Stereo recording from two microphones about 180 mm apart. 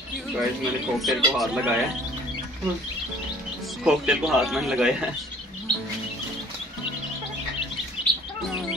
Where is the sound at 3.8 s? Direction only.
5° right (ahead or behind).